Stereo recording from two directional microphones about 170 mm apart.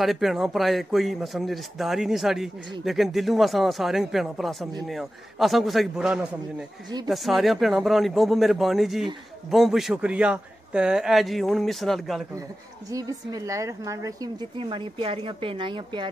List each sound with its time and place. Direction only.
0.0 s speech: centre (ahead or behind)
12.9 s a woman's voice: 20° right (ahead or behind)
14.6 s a woman's voice: 30° right (ahead or behind)